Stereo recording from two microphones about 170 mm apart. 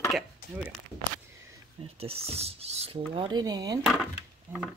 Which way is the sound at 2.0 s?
35° right (ahead or behind).